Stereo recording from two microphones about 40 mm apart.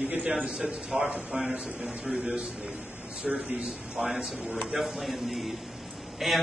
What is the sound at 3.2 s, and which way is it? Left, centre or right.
Speech, centre.